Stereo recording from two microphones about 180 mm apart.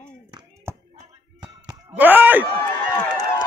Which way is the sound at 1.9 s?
10° right (ahead or behind).